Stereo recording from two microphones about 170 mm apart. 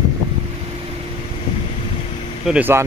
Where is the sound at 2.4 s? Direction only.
10° right (ahead or behind).